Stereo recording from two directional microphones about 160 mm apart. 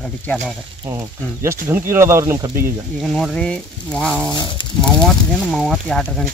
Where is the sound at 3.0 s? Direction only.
Centre (ahead or behind).